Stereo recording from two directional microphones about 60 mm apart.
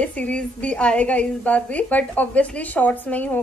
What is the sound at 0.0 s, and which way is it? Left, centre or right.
A woman's voice, centre.